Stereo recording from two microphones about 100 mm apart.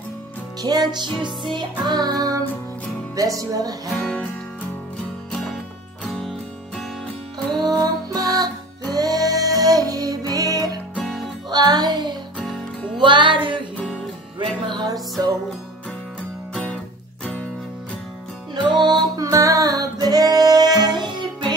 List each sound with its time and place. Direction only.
0.6 s music: 40° right (ahead or behind)
3.9 s music: 5° left (ahead or behind)
7.4 s music: centre (ahead or behind)
7.8 s music: 40° right (ahead or behind)
12.4 s music: centre (ahead or behind)
13.0 s music: 55° right (ahead or behind); by 15.3 s 40° right (ahead or behind)
17.2 s music: 10° left (ahead or behind)
18.5 s music: 45° right (ahead or behind)
19.3 s music: 35° right (ahead or behind)